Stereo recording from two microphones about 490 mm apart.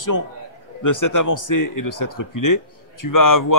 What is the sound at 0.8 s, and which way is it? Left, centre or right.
Speech, left.